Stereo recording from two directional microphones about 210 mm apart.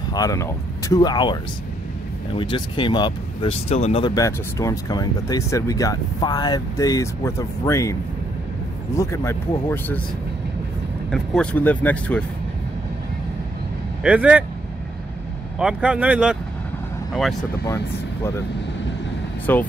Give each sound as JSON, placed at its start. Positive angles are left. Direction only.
{"t": 0.1, "sound": "speech", "side_deg": 15}
{"t": 8.9, "sound": "speech", "side_deg": 15}
{"t": 11.1, "sound": "speech", "side_deg": 5}
{"t": 14.0, "sound": "speech", "side_deg": -5}
{"t": 15.6, "sound": "speech", "side_deg": -5}
{"t": 17.4, "sound": "speech", "side_deg": 10}
{"t": 19.5, "sound": "speech", "side_deg": 10}